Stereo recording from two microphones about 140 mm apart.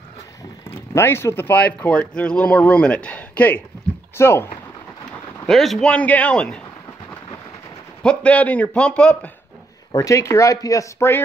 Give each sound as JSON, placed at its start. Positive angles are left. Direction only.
{"t": 0.9, "sound": "speech", "side_deg": 20}
{"t": 5.1, "sound": "speech", "side_deg": 0}
{"t": 8.0, "sound": "speech", "side_deg": 10}
{"t": 9.9, "sound": "speech", "side_deg": 25}